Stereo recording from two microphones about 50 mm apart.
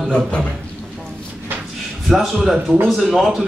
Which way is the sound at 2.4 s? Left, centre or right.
Centre.